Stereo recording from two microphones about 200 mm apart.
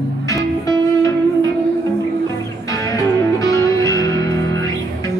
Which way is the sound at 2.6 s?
15° left (ahead or behind).